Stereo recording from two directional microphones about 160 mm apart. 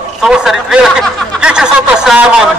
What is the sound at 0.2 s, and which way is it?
A man's voice, 5° right (ahead or behind).